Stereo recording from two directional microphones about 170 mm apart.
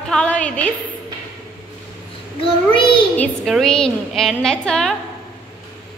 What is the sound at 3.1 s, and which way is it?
A woman's voice, centre (ahead or behind).